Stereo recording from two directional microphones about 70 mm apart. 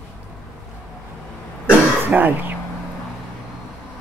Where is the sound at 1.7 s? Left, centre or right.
Right.